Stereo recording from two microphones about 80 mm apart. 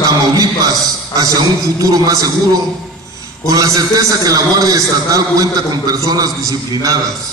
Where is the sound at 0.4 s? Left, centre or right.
Right.